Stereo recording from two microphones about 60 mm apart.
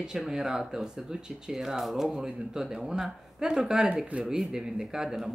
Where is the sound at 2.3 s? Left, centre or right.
Centre.